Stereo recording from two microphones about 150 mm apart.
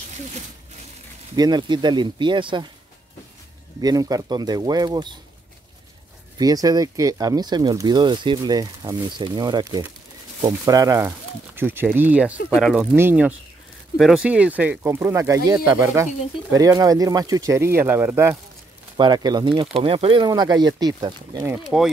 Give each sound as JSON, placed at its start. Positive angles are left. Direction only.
{"t": 1.3, "sound": "speech", "side_deg": -25}
{"t": 3.8, "sound": "speech", "side_deg": -25}
{"t": 6.3, "sound": "speech", "side_deg": -25}
{"t": 13.9, "sound": "speech", "side_deg": 0}
{"t": 18.9, "sound": "speech", "side_deg": -30}
{"t": 20.2, "sound": "speech", "side_deg": -25}
{"t": 21.7, "sound": "speech", "side_deg": -5}